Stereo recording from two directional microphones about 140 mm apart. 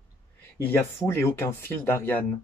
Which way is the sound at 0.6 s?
15° left (ahead or behind).